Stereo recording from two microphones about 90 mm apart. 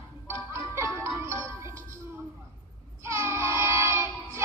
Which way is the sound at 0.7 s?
30° right (ahead or behind).